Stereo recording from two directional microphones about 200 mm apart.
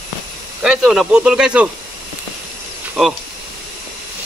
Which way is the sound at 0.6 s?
5° right (ahead or behind).